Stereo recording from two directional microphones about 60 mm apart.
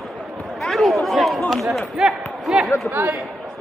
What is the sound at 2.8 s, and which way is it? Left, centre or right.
Speech, right.